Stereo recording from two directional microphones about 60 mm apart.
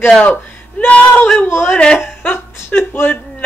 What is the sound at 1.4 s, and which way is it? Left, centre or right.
Speech, left.